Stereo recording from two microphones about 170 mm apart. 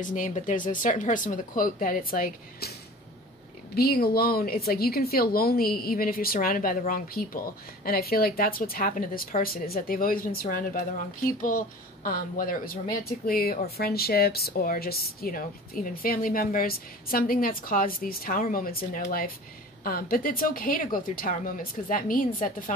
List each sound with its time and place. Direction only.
0.0 s speech: 50° left (ahead or behind)
3.7 s speech: 65° left (ahead or behind)